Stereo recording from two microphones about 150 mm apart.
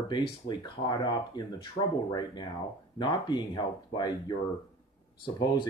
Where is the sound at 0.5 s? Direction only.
30° left (ahead or behind).